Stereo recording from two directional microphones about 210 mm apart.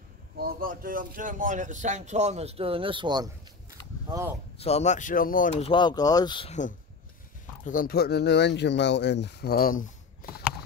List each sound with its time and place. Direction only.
0.4 s speech: 45° right (ahead or behind); by 3.3 s 20° right (ahead or behind)
4.6 s speech: 30° left (ahead or behind)
5.6 s speech: 25° left (ahead or behind)
7.6 s speech: 40° left (ahead or behind)